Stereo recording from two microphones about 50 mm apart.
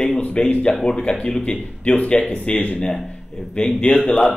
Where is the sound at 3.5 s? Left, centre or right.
Centre.